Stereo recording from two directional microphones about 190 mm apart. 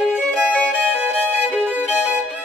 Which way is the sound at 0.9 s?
10° right (ahead or behind).